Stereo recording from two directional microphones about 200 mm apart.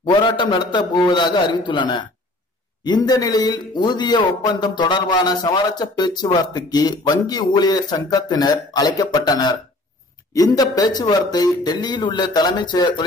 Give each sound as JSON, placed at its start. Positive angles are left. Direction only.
{"t": 0.0, "sound": "a man's voice", "side_deg": 25}